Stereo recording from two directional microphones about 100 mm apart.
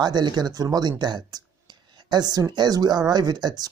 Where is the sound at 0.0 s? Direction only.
45° right (ahead or behind).